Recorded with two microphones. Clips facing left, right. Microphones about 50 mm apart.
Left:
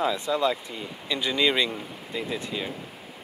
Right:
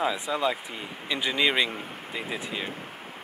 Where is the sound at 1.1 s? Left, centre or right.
Centre.